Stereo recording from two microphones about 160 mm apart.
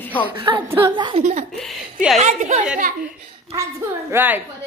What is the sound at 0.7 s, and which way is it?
Speech, 15° right (ahead or behind).